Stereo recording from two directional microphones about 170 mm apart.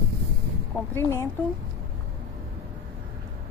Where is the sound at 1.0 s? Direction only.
20° left (ahead or behind).